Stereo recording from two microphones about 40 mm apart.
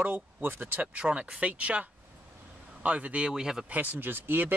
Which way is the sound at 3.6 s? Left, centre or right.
Right.